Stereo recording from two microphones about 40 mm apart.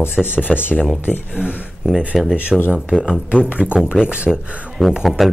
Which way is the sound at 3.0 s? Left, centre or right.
Right.